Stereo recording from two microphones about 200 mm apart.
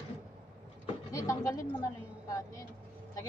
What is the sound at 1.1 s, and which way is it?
A woman's voice, 15° left (ahead or behind).